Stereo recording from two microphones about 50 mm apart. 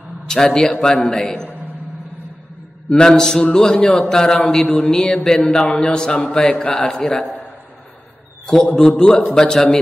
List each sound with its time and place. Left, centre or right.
0.3 s mantra: centre
2.9 s mantra: centre
4.4 s a sound: left
5.3 s mantra: centre
8.7 s mantra: centre